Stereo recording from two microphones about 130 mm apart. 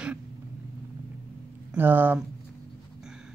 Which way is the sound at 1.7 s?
15° right (ahead or behind).